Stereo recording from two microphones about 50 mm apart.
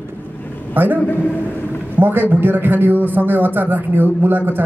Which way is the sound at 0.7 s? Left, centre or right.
Right.